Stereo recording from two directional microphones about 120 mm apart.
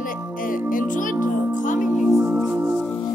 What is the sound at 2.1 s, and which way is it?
Music, 20° right (ahead or behind).